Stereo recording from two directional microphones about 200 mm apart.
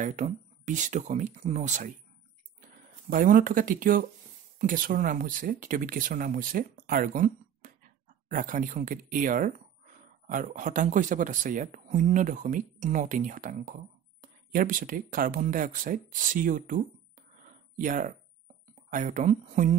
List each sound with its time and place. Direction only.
0.0 s speech: 40° right (ahead or behind)
3.1 s speech: 45° right (ahead or behind)
17.5 s a sound: 40° right (ahead or behind)
18.9 s speech: 40° right (ahead or behind)